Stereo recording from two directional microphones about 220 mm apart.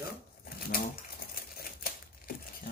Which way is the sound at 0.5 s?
40° left (ahead or behind).